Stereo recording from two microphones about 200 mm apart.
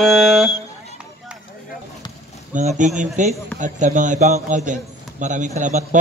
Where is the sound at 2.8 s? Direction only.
40° right (ahead or behind).